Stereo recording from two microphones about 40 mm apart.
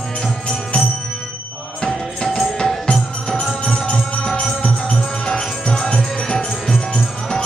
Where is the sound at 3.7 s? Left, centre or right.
Centre.